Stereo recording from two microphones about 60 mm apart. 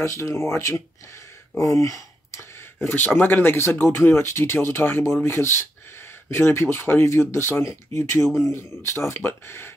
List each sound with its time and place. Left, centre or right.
0.0 s speech: left
2.8 s speech: left
3.5 s speech: left